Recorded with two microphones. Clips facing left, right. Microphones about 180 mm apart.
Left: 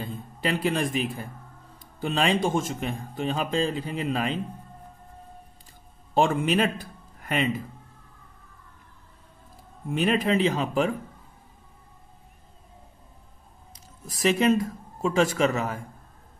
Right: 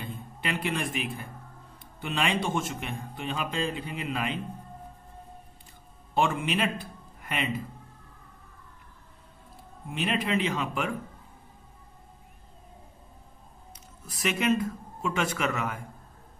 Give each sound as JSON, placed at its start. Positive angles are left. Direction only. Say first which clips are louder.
{"t": 0.0, "sound": "a man's voice", "louder": "left 6 dB", "side_deg": 35}
{"t": 6.1, "sound": "speech", "louder": "left 5 dB", "side_deg": 40}
{"t": 9.9, "sound": "speech", "louder": "left 5 dB", "side_deg": 45}
{"t": 13.7, "sound": "speech", "louder": "left 7 dB", "side_deg": 35}